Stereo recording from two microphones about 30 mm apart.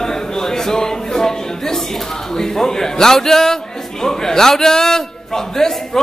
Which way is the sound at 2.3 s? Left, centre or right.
Centre.